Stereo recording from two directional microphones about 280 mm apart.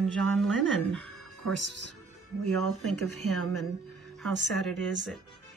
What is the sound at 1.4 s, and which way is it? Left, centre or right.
Speech, right.